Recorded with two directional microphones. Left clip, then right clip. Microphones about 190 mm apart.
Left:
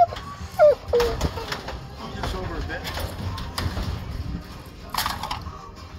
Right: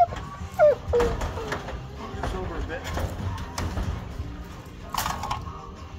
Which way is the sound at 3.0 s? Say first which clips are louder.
Left 1 dB; 15° left (ahead or behind).